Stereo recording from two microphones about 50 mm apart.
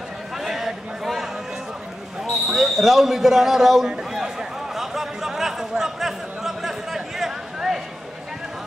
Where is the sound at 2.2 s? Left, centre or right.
Centre.